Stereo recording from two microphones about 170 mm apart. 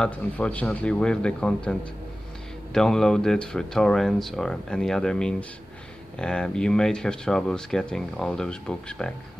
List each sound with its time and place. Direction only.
0.0 s speech: 5° left (ahead or behind)